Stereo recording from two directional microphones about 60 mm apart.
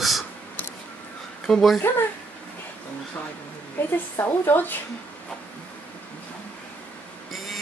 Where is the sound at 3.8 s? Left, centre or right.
Left.